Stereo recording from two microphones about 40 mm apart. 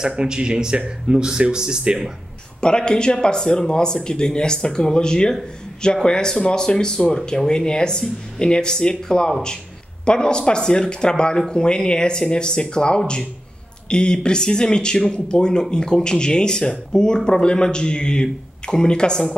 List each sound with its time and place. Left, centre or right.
0.0 s speech: right
2.6 s speech: left
7.2 s speech: centre